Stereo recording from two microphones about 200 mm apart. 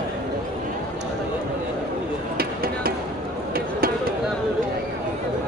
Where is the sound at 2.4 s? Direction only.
50° right (ahead or behind).